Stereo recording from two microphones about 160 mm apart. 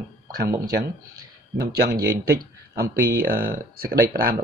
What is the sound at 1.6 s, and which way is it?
Speech, 70° right (ahead or behind).